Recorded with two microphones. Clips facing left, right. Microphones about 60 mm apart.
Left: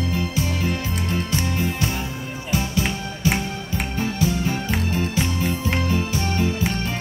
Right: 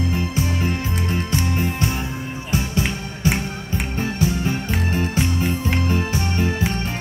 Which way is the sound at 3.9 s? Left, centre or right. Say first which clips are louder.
Even; right.